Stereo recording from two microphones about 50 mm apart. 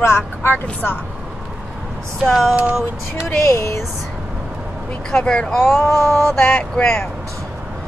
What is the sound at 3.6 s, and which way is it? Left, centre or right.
Speech, left.